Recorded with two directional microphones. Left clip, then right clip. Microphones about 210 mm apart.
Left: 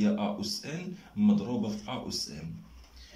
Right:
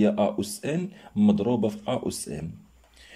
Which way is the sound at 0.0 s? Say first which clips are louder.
Right 8 dB; 55° right (ahead or behind).